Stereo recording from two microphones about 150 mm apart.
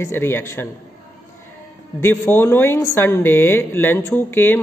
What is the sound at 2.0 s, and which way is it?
A woman's voice, 15° left (ahead or behind).